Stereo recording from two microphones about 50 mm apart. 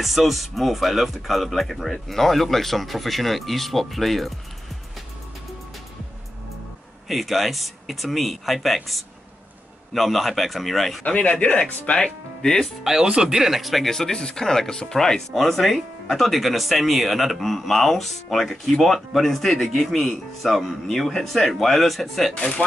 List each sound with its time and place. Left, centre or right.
0.0 s speech: centre
7.1 s speech: centre
11.1 s speech: left
12.8 s speech: centre
13.9 s speech: centre